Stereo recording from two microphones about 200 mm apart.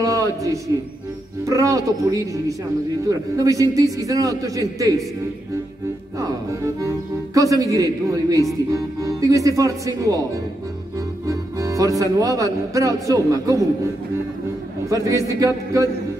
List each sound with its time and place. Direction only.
0.0 s music: 15° right (ahead or behind)
1.4 s speech: 15° right (ahead or behind)
6.1 s speech: 15° right (ahead or behind)
11.2 s accordion: 15° right (ahead or behind)
12.0 s speech: 15° right (ahead or behind)
14.9 s speech: 15° right (ahead or behind)